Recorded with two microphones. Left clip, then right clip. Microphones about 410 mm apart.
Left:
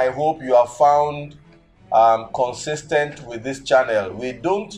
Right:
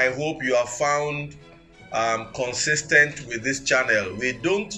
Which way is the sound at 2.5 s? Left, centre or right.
Centre.